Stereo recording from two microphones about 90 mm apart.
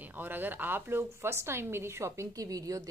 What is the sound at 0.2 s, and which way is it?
A woman's voice, 20° right (ahead or behind).